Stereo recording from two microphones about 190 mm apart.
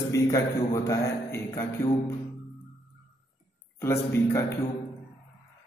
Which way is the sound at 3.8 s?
15° left (ahead or behind).